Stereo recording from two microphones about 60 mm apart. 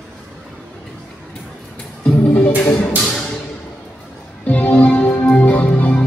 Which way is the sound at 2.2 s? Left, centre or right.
Left.